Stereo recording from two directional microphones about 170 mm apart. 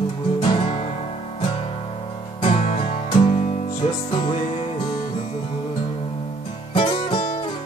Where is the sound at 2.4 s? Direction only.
35° left (ahead or behind).